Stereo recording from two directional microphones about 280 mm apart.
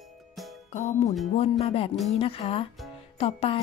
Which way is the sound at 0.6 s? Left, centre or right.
Left.